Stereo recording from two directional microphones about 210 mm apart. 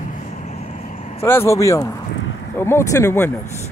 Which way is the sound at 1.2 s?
10° left (ahead or behind).